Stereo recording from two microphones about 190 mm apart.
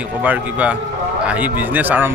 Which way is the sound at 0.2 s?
10° right (ahead or behind).